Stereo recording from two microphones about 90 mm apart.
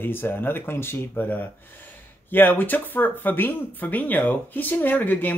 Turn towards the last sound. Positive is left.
turn(degrees=20)  # may be behind; listen again after turning